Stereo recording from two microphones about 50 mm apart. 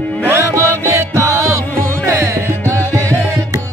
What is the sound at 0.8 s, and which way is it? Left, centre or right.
Music, right.